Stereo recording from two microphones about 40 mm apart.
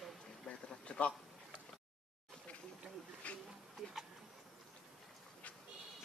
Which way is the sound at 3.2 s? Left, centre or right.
Left.